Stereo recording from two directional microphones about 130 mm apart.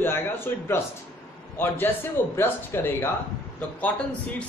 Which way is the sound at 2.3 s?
20° left (ahead or behind).